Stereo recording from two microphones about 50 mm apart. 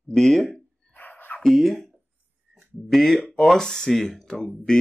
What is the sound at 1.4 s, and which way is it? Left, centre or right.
Speech, centre.